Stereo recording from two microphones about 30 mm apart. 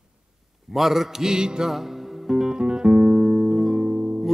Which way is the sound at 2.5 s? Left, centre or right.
Right.